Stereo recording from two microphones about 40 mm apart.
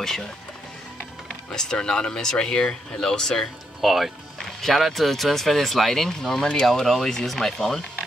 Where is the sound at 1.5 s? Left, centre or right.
Centre.